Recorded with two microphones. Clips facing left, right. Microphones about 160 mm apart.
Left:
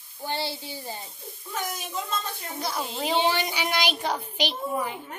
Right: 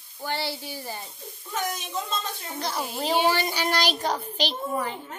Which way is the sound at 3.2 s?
15° left (ahead or behind).